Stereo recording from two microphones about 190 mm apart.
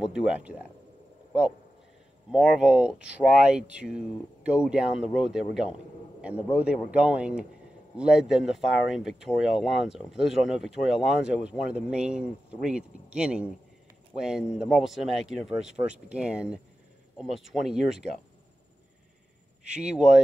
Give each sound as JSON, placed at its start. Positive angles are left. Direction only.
{"t": 0.0, "sound": "speech", "side_deg": -5}
{"t": 2.3, "sound": "speech", "side_deg": -5}
{"t": 19.6, "sound": "speech", "side_deg": -5}